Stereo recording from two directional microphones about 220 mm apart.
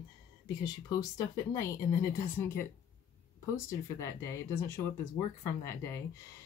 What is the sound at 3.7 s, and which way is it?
Speech, 10° left (ahead or behind).